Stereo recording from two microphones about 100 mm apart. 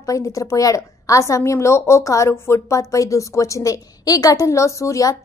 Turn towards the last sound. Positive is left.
turn(degrees=35)  # may be behind; listen again after turning